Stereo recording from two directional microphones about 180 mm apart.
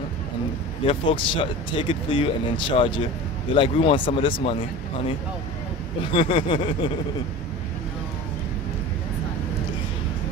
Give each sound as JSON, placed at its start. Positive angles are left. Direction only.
{"t": 0.8, "sound": "speech", "side_deg": 30}
{"t": 6.1, "sound": "speech", "side_deg": 30}